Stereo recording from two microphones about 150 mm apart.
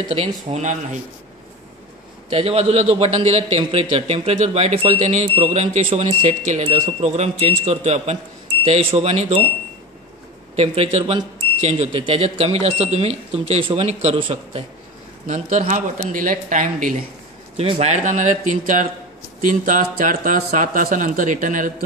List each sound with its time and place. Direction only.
0.1 s speech: 40° right (ahead or behind)
2.2 s speech: 40° right (ahead or behind)
10.5 s speech: 40° right (ahead or behind)
15.2 s speech: 50° right (ahead or behind)
17.6 s speech: 40° right (ahead or behind); by 21.7 s 60° right (ahead or behind)